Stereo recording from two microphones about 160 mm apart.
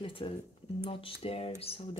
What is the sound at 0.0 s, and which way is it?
Speech, 35° left (ahead or behind).